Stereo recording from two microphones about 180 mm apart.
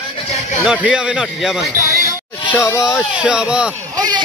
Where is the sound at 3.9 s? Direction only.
20° right (ahead or behind).